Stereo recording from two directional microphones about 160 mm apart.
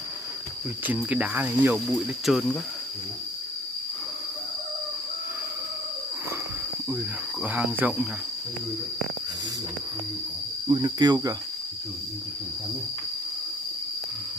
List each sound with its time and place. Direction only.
0.8 s speech: 10° right (ahead or behind)
1.9 s speech: centre (ahead or behind)
7.4 s speech: 10° right (ahead or behind)
10.7 s cricket: 25° right (ahead or behind)